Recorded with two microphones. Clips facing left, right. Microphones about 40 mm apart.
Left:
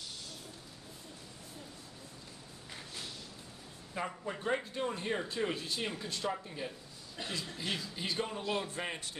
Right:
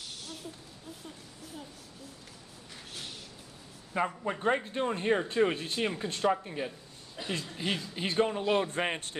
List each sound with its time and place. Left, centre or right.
4.2 s speech: right
7.2 s speech: centre
7.5 s speech: right